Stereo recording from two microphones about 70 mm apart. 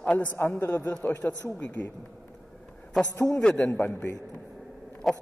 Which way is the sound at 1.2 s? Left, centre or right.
Centre.